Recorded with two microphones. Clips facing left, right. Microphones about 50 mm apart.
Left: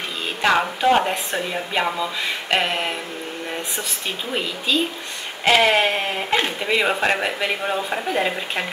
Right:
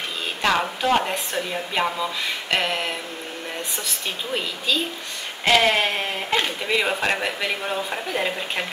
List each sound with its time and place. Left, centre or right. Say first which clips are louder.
0.4 s speech: left 3 dB; centre
2.5 s a sound: left 2 dB; centre
4.3 s speech: left 2 dB; centre